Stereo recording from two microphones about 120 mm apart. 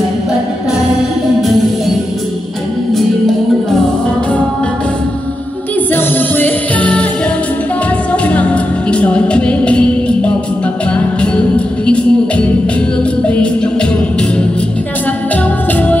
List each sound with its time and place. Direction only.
5.9 s music: 15° left (ahead or behind)
8.1 s music: 10° left (ahead or behind)